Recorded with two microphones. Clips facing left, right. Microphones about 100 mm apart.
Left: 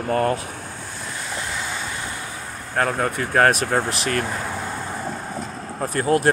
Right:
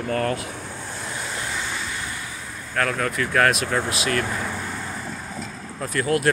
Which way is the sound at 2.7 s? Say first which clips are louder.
Left 2 dB; 35° left (ahead or behind).